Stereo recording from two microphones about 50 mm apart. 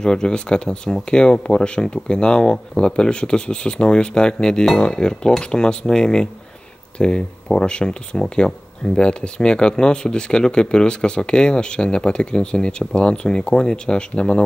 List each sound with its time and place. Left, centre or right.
0.0 s speech: centre